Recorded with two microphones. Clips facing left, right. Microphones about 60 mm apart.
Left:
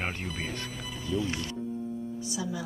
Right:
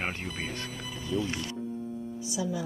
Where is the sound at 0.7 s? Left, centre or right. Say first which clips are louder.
Even; centre.